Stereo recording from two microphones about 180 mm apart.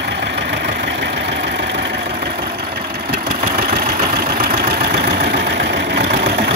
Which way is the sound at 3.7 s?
50° right (ahead or behind).